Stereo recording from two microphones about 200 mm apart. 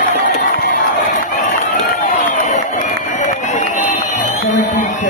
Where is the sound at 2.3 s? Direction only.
35° left (ahead or behind).